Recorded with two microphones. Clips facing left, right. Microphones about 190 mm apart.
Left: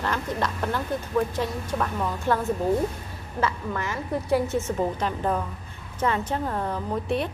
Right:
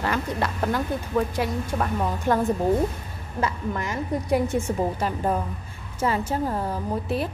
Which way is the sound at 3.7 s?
15° right (ahead or behind).